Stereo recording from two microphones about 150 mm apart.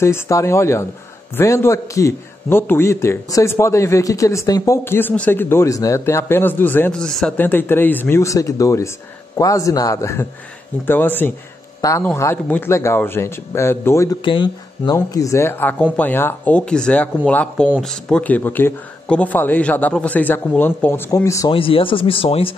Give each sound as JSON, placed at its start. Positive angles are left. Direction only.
{"t": 0.0, "sound": "a man's voice", "side_deg": 20}
{"t": 14.2, "sound": "a man's voice", "side_deg": 30}
{"t": 17.6, "sound": "speech", "side_deg": -5}
{"t": 18.0, "sound": "a man's voice", "side_deg": 10}
{"t": 21.5, "sound": "speech", "side_deg": 35}